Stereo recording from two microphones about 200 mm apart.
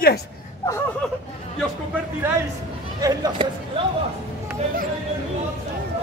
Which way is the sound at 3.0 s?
20° right (ahead or behind).